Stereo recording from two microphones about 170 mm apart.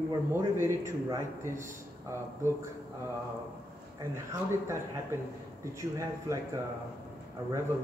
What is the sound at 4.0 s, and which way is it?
A man's voice, 20° right (ahead or behind).